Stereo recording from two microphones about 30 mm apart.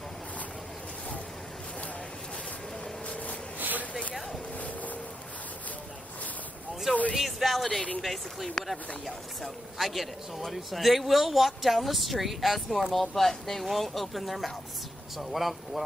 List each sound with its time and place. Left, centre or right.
3.5 s a sound: right
4.6 s boat: left
7.2 s speech: centre